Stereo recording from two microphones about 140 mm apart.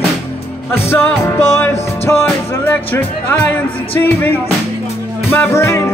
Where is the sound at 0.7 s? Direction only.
15° left (ahead or behind).